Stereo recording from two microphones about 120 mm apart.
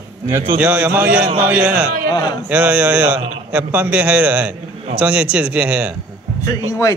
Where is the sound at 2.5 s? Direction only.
10° right (ahead or behind).